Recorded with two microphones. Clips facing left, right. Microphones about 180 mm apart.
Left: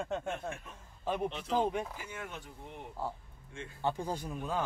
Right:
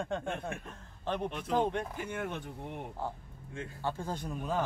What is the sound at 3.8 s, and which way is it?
Speech, 15° left (ahead or behind).